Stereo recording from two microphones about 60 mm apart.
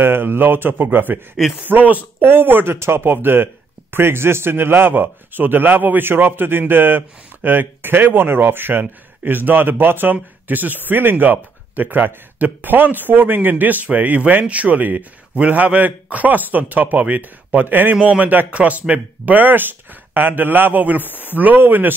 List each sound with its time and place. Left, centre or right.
0.0 s a man's voice: right
21.0 s speech: left
21.4 s speech: right